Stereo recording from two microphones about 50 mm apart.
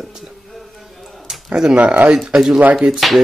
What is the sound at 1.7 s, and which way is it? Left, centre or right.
Speech, right.